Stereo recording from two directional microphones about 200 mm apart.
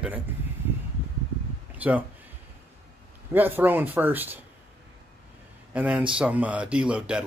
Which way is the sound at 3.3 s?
10° right (ahead or behind).